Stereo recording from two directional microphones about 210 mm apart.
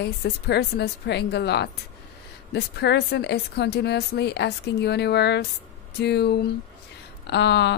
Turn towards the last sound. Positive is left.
turn(degrees=55)  # may be behind; listen again after turning